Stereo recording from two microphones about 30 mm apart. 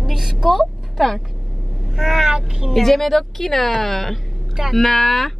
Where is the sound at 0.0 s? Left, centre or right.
Centre.